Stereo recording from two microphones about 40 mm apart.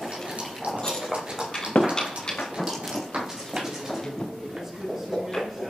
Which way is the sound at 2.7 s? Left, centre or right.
Centre.